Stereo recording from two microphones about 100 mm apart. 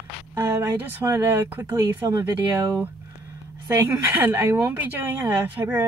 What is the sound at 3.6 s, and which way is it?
Speech, 30° right (ahead or behind).